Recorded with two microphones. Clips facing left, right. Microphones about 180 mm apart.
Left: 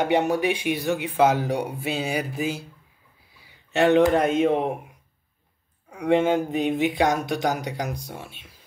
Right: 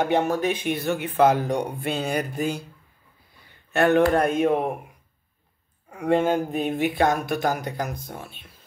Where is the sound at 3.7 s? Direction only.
15° left (ahead or behind).